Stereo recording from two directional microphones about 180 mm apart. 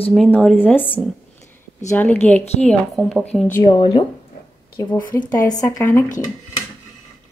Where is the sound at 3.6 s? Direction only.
25° left (ahead or behind).